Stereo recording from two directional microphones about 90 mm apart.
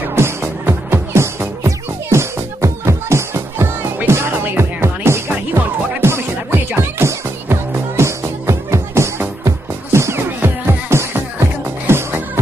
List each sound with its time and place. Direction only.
0.1 s music: 30° right (ahead or behind)